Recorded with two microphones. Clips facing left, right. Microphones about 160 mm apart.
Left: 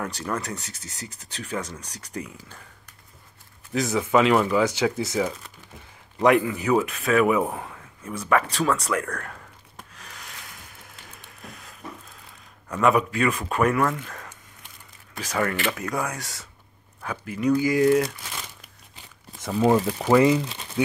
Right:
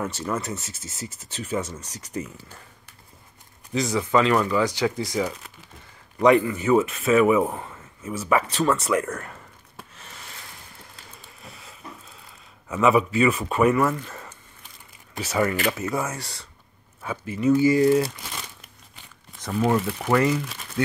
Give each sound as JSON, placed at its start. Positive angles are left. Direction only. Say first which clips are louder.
{"t": 0.0, "sound": "speech", "louder": "right 2 dB", "side_deg": -5}
{"t": 3.7, "sound": "speech", "louder": "even", "side_deg": 0}
{"t": 4.1, "sound": "a man's voice", "louder": "left 1 dB", "side_deg": 15}
{"t": 11.4, "sound": "a sound", "louder": "left 2 dB", "side_deg": -5}
{"t": 12.6, "sound": "speech", "louder": "right 1 dB", "side_deg": -5}
{"t": 19.5, "sound": "speech", "louder": "left 2 dB", "side_deg": 30}